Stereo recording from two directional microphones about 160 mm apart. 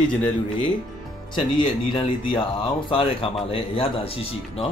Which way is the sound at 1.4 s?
30° left (ahead or behind).